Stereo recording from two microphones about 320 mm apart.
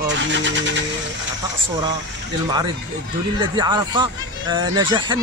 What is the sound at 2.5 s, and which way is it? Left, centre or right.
Speech, centre.